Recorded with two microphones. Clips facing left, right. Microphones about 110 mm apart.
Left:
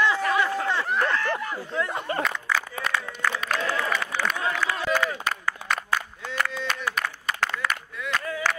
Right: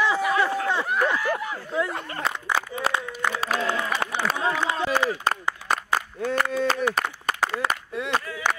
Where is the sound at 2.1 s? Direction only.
25° left (ahead or behind).